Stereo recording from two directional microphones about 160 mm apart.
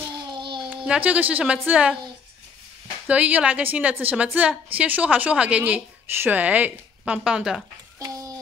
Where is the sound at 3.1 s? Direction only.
10° right (ahead or behind).